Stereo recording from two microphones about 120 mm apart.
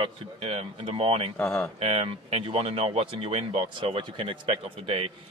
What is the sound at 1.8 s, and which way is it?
Speech, 50° right (ahead or behind).